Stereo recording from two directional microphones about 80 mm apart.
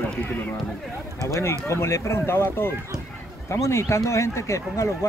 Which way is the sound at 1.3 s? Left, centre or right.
Left.